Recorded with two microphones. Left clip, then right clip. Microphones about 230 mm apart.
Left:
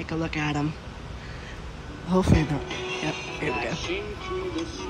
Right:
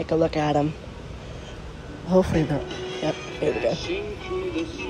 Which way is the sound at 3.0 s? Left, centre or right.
Left.